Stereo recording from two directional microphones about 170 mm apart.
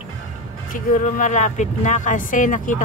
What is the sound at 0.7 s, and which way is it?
Speech, 50° left (ahead or behind).